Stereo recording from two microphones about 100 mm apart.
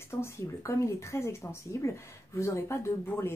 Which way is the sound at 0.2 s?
30° left (ahead or behind).